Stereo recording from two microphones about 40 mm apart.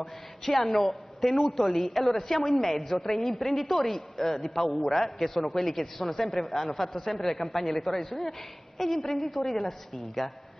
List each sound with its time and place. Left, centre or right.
0.0 s a woman's voice: centre